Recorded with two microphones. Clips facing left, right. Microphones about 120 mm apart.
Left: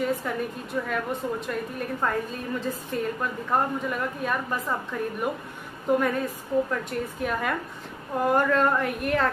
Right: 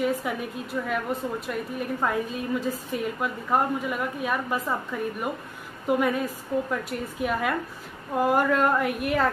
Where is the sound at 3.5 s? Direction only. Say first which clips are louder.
Right 1 dB; 5° right (ahead or behind).